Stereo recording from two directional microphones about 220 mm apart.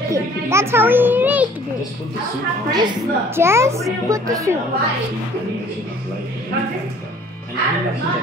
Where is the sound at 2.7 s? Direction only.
20° right (ahead or behind).